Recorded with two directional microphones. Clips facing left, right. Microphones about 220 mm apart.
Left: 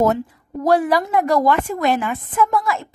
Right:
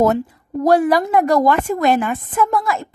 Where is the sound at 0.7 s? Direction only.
45° right (ahead or behind).